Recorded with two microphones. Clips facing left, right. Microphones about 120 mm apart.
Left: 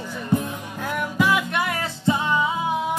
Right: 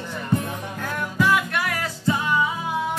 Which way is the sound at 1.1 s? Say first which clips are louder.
Right 1 dB; 15° left (ahead or behind).